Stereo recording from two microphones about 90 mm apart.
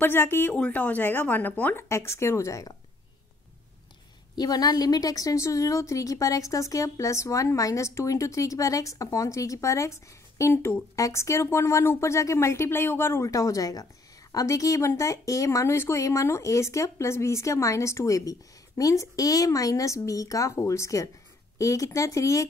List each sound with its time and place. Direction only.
0.0 s speech: 25° left (ahead or behind)
1.9 s a woman's voice: 30° left (ahead or behind)
4.4 s a woman's voice: 45° left (ahead or behind)